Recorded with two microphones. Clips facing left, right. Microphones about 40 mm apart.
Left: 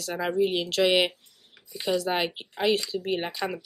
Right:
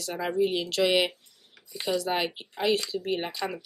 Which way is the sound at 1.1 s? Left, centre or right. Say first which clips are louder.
Even; centre.